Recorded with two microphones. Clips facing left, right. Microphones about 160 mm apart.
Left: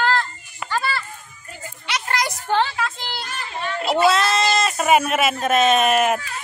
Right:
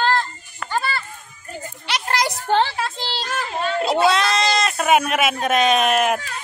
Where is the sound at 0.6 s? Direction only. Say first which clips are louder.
Even; 5° left (ahead or behind).